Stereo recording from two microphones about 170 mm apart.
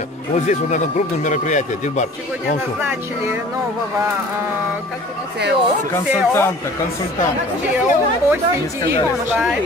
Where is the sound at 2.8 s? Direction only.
15° right (ahead or behind).